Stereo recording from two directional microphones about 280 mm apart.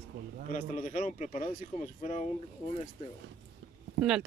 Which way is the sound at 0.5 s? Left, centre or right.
Left.